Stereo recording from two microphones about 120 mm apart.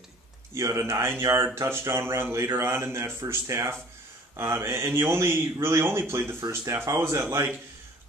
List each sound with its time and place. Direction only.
0.6 s speech: 25° right (ahead or behind)